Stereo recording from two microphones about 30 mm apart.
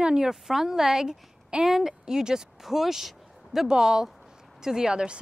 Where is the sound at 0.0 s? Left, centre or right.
Right.